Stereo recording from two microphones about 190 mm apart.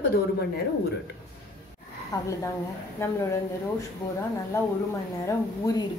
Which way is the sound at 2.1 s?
20° left (ahead or behind).